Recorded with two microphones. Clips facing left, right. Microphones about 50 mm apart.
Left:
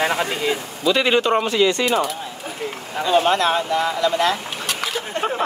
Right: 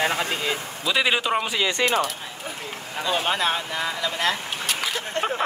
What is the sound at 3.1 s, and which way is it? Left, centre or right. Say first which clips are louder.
Speech: left 6 dB; centre.